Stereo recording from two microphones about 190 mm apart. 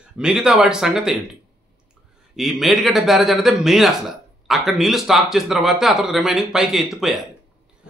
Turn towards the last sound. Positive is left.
turn(degrees=0)  # may be behind; listen again after turning